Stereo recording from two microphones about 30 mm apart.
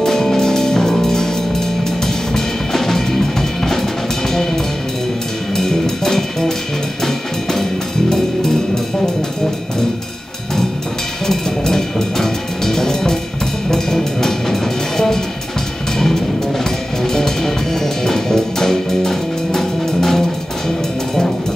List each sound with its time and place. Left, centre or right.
0.0 s music: centre
5.6 s music: centre
11.2 s music: centre
17.0 s music: centre